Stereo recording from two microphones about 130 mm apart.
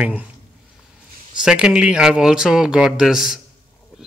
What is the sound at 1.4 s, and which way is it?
Speech, 5° right (ahead or behind).